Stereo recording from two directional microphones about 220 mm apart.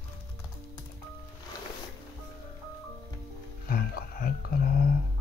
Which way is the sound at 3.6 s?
40° left (ahead or behind).